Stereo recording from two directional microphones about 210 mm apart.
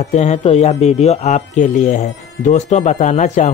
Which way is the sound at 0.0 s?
35° left (ahead or behind).